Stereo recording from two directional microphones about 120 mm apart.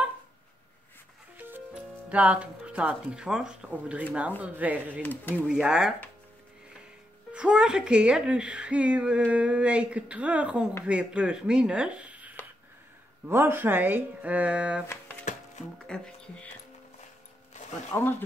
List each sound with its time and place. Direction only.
1.3 s speech: 15° right (ahead or behind)
5.0 s speech: 15° left (ahead or behind)
5.3 s speech: 10° right (ahead or behind)
7.3 s speech: 5° right (ahead or behind)
15.9 s speech: 5° left (ahead or behind)